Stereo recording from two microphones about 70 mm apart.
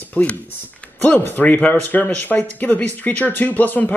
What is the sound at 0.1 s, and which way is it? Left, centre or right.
Speech, left.